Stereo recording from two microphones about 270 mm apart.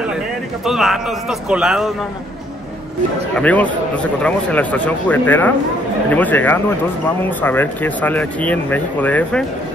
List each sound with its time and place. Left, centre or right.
0.7 s a man's voice: centre
3.3 s a man's voice: centre